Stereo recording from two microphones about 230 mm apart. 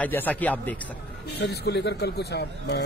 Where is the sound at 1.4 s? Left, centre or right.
Left.